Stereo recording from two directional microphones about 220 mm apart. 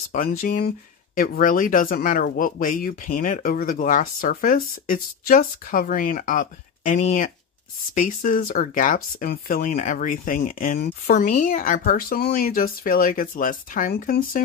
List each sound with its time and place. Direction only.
0.1 s speech: 35° left (ahead or behind)